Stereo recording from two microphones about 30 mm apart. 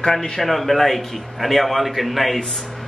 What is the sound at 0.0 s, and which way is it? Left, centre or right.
Speech, centre.